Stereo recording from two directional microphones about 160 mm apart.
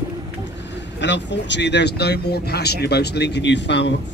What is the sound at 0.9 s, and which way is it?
Speech, 90° left.